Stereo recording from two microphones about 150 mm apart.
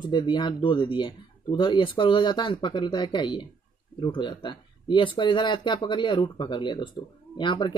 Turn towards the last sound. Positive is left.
turn(degrees=35)  # may be behind; listen again after turning